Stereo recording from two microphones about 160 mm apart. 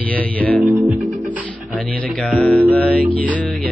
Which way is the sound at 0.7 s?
15° right (ahead or behind).